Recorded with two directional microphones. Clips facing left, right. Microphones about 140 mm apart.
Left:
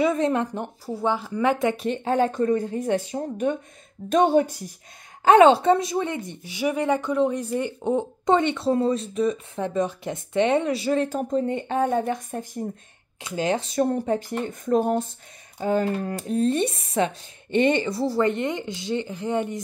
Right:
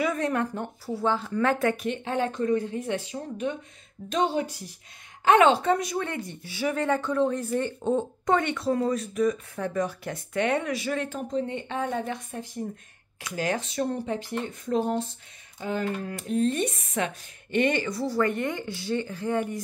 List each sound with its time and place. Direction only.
0.0 s a woman's voice: 25° left (ahead or behind)
1.8 s speech: 40° left (ahead or behind)
5.2 s speech: 35° left (ahead or behind)
13.2 s speech: 25° left (ahead or behind)
13.7 s speech: 45° left (ahead or behind); by 19.6 s 20° left (ahead or behind)